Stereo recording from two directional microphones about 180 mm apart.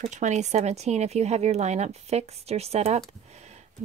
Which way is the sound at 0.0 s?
40° right (ahead or behind).